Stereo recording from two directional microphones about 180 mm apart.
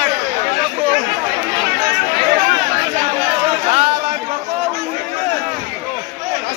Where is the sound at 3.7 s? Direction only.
40° right (ahead or behind).